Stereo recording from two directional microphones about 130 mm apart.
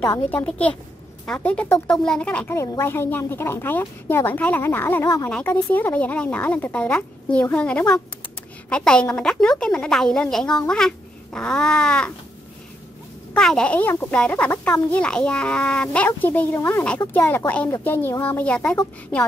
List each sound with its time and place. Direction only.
0.3 s a woman's voice: 10° left (ahead or behind)
2.5 s a woman's voice: 20° left (ahead or behind)
13.3 s a woman's voice: 5° left (ahead or behind)